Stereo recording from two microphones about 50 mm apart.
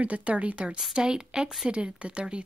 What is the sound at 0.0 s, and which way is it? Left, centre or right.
A woman's voice, right.